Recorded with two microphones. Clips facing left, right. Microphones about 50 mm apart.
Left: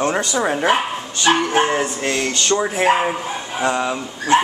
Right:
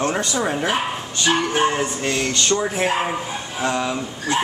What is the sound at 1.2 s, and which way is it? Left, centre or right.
Speech, left.